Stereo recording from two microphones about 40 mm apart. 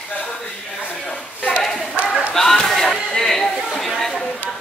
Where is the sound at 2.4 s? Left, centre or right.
Centre.